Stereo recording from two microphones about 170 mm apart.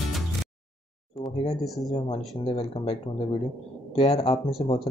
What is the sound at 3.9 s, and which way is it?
Speech, 35° left (ahead or behind).